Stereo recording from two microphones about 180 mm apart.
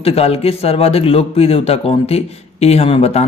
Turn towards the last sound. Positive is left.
turn(degrees=35)  # may be behind; listen again after turning